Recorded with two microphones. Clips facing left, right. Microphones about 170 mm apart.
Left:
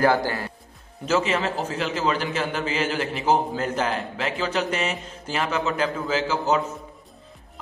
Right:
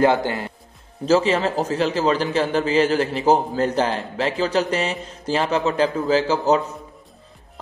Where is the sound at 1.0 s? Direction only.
35° right (ahead or behind).